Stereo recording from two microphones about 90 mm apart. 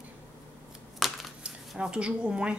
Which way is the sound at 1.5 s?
10° right (ahead or behind).